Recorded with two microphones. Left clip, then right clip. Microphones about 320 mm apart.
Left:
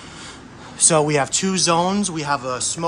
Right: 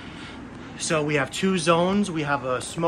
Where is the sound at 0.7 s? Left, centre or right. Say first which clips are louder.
Left 8 dB; centre.